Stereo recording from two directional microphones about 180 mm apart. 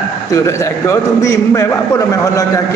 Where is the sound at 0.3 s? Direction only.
20° left (ahead or behind).